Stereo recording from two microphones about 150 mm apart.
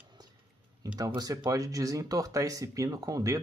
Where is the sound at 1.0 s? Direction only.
25° right (ahead or behind).